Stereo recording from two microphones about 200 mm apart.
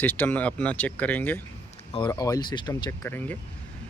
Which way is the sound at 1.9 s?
20° left (ahead or behind).